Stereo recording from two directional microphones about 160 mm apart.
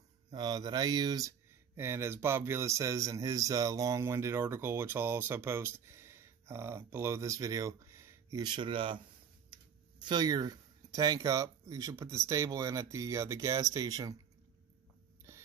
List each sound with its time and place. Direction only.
0.3 s speech: 25° right (ahead or behind)